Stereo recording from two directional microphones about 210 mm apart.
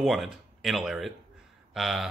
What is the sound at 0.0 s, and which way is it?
Speech, centre (ahead or behind).